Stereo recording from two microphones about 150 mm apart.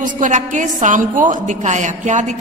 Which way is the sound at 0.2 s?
55° right (ahead or behind).